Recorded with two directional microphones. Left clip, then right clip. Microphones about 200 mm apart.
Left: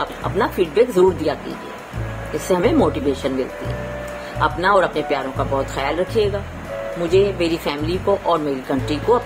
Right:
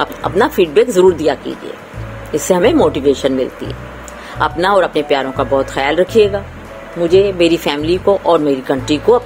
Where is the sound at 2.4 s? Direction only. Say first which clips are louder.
Right 6 dB; 35° right (ahead or behind).